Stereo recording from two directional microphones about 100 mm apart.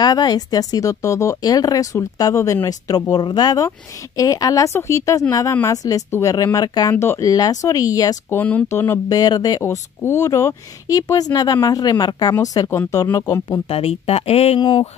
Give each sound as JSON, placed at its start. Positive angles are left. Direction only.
{"t": 0.0, "sound": "speech", "side_deg": 40}
{"t": 3.1, "sound": "speech", "side_deg": 45}
{"t": 7.0, "sound": "speech", "side_deg": 30}
{"t": 8.3, "sound": "speech", "side_deg": 15}
{"t": 9.1, "sound": "speech", "side_deg": 40}
{"t": 9.6, "sound": "speech", "side_deg": 25}
{"t": 13.7, "sound": "speech", "side_deg": 80}
{"t": 14.6, "sound": "speech", "side_deg": 50}